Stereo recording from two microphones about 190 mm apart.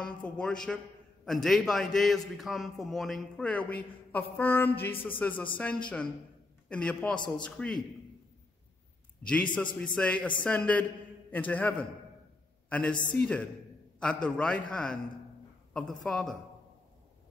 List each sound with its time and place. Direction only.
0.0 s a man's voice: 5° left (ahead or behind)
9.3 s a man's voice: 5° left (ahead or behind)